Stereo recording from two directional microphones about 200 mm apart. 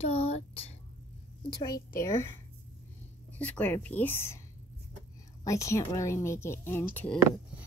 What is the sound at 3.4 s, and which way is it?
Speech, 5° left (ahead or behind).